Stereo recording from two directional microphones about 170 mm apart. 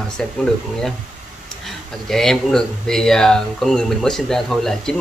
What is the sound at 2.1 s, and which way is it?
Speech, centre (ahead or behind).